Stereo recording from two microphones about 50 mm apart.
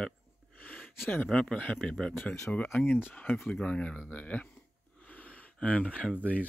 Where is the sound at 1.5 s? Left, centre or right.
Left.